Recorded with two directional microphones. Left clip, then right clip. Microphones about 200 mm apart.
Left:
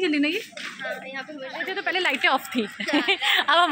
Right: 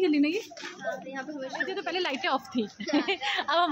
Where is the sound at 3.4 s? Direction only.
10° left (ahead or behind).